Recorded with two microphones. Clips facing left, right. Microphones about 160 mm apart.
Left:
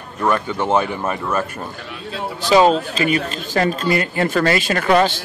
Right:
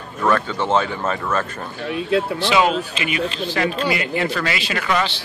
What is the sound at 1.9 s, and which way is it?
Speech, 70° right (ahead or behind).